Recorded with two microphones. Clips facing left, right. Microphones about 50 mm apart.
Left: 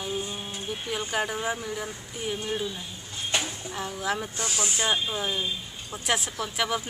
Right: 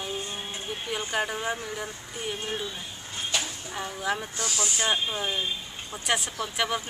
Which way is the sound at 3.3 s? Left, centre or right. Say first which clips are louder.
Left 2 dB; left.